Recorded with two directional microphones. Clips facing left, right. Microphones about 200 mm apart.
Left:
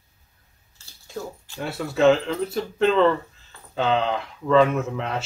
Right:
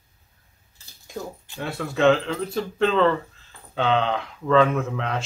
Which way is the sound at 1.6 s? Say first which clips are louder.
Left 1 dB; centre (ahead or behind).